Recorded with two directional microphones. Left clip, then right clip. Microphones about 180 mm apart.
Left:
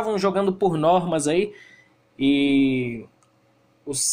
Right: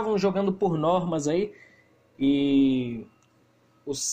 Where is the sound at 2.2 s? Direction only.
10° right (ahead or behind).